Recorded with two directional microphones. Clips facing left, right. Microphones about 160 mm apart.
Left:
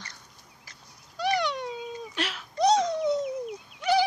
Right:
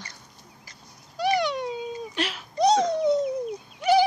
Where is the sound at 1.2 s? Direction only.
5° right (ahead or behind).